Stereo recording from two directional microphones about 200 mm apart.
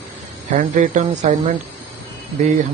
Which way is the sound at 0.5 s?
40° right (ahead or behind).